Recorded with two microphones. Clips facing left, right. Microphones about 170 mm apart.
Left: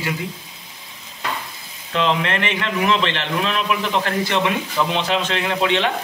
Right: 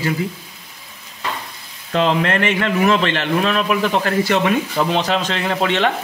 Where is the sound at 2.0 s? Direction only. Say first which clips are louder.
Right 3 dB; 45° right (ahead or behind).